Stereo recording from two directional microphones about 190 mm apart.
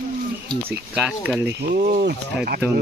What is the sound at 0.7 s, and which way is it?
Speech, 10° right (ahead or behind).